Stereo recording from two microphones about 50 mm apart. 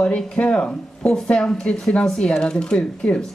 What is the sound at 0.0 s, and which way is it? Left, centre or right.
Speech, left.